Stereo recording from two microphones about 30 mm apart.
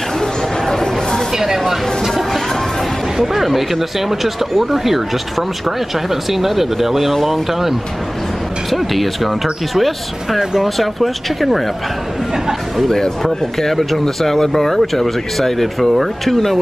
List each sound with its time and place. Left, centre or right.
0.7 s a sound: centre
1.3 s a sound: centre
3.3 s speech: centre
6.0 s speech: centre
8.7 s speech: centre
12.8 s speech: centre